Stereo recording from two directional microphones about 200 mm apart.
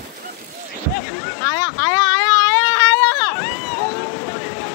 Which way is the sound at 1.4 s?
20° left (ahead or behind).